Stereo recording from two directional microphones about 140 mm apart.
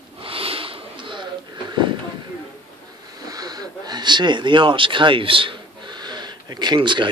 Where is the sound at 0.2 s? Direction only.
40° right (ahead or behind).